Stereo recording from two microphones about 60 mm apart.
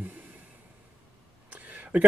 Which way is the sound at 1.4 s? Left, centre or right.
Right.